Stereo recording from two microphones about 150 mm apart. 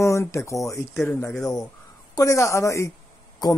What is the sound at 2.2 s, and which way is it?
Speech, 20° left (ahead or behind).